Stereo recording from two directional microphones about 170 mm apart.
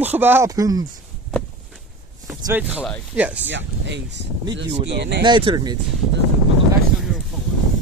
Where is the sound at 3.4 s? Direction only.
90° right.